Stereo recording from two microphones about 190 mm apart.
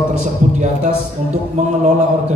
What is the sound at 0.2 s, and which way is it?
Speech, 35° right (ahead or behind).